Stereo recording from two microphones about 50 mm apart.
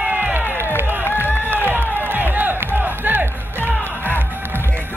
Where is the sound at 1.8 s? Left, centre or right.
Right.